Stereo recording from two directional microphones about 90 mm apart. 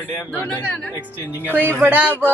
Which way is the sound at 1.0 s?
20° right (ahead or behind).